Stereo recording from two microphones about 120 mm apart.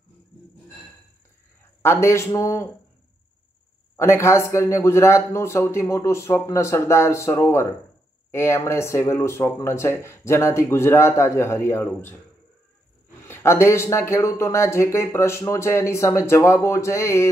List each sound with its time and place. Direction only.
1.8 s speech: 20° left (ahead or behind)
3.9 s speech: 20° left (ahead or behind)
13.3 s speech: 20° left (ahead or behind)